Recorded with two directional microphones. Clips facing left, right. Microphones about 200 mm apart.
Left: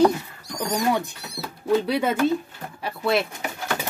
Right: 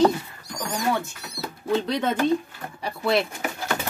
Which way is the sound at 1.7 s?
10° left (ahead or behind).